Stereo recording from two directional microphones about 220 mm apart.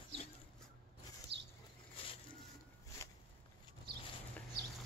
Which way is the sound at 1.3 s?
50° right (ahead or behind).